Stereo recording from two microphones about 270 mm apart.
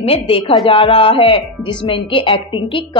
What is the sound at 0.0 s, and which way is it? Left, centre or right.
A woman's voice, left.